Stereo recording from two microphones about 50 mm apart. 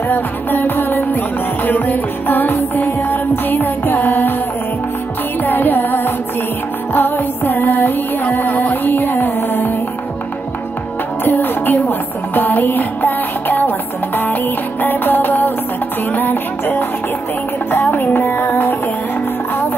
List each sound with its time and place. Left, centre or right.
0.1 s music: left
5.4 s music: left
11.2 s music: left